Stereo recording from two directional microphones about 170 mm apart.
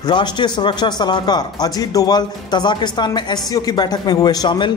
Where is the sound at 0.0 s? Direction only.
25° left (ahead or behind).